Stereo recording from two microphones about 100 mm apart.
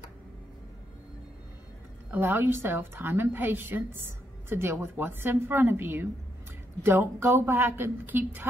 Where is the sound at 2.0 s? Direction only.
20° right (ahead or behind).